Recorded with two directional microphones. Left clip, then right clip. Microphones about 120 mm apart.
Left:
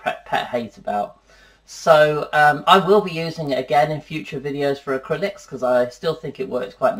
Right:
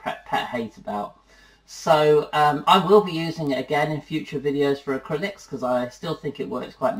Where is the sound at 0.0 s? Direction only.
40° left (ahead or behind).